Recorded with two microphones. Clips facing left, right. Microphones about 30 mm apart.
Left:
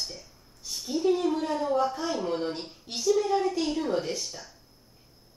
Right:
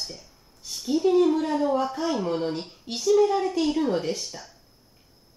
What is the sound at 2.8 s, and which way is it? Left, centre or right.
Speech, right.